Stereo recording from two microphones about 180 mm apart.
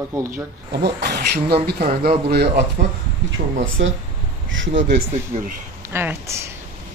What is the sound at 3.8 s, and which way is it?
Speech, 90° right.